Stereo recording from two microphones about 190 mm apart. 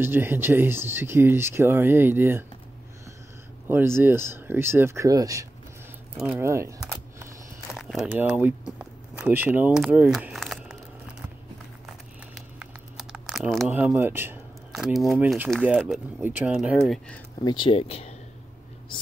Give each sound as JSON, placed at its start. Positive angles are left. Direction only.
{"t": 0.0, "sound": "speech", "side_deg": -10}
{"t": 3.6, "sound": "speech", "side_deg": -10}
{"t": 6.1, "sound": "speech", "side_deg": -5}
{"t": 6.4, "sound": "speech", "side_deg": -15}
{"t": 7.7, "sound": "speech", "side_deg": 0}
{"t": 12.5, "sound": "a sound", "side_deg": -5}
{"t": 15.6, "sound": "speech", "side_deg": -5}
{"t": 17.5, "sound": "speech", "side_deg": 25}